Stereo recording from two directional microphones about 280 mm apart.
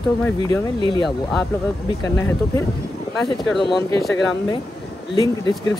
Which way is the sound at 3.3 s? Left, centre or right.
Centre.